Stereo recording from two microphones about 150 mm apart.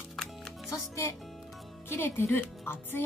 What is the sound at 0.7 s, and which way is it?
A woman's voice, 20° left (ahead or behind).